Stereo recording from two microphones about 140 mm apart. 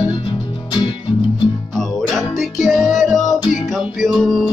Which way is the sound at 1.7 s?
Centre (ahead or behind).